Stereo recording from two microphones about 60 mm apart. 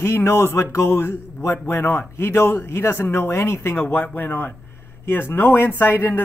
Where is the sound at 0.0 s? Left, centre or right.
Left.